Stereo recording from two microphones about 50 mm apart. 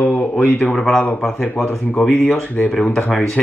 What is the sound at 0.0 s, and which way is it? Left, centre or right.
Speech, left.